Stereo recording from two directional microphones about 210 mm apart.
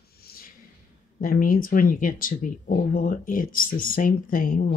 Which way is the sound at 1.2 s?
40° left (ahead or behind).